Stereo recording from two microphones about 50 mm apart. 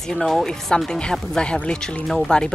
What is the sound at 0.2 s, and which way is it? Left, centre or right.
Speech, centre.